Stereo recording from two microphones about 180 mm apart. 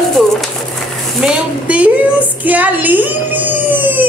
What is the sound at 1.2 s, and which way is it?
A woman's voice, 5° right (ahead or behind).